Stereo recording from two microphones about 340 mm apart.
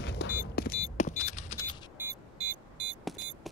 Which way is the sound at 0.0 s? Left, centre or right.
Left.